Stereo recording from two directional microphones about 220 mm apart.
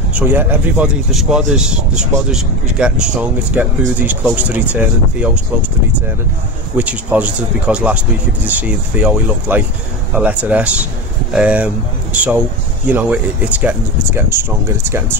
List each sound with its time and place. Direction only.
0.1 s speech: 10° right (ahead or behind)
6.8 s speech: 5° right (ahead or behind)